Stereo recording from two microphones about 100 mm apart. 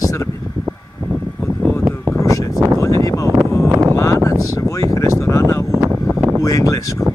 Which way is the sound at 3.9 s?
30° left (ahead or behind).